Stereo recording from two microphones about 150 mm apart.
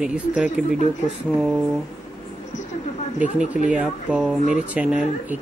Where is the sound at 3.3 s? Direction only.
5° right (ahead or behind).